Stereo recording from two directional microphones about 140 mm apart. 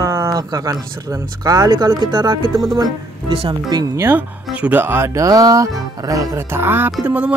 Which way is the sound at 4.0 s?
15° right (ahead or behind).